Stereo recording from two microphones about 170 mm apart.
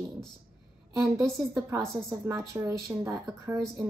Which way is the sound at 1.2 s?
20° right (ahead or behind).